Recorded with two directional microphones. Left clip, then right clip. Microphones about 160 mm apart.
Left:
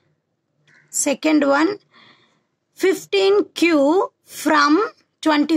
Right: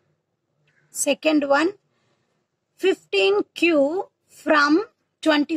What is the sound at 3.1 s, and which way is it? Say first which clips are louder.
A woman's voice: left 5 dB; 45° left (ahead or behind).